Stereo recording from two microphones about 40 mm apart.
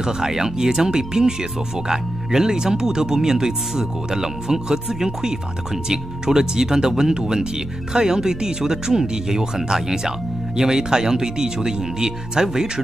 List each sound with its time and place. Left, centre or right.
0.0 s speech: centre